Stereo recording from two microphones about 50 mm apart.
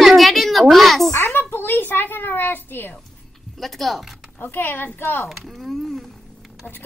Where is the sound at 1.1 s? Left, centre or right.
Left.